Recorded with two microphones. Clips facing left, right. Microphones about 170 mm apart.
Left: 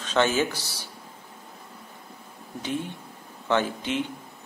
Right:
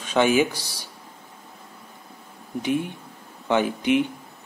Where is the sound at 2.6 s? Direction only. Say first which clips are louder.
Right 6 dB; 15° right (ahead or behind).